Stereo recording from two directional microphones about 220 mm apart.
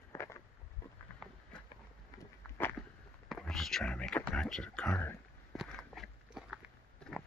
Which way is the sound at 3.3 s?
Centre (ahead or behind).